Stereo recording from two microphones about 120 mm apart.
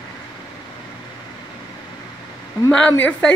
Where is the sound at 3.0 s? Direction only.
10° left (ahead or behind).